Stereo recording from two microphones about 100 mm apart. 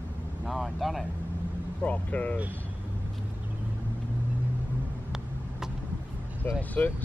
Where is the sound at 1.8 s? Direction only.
15° left (ahead or behind).